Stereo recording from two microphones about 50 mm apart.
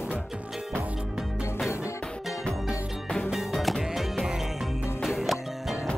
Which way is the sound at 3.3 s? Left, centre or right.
Centre.